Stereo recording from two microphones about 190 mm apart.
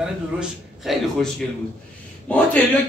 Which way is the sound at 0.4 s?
Centre (ahead or behind).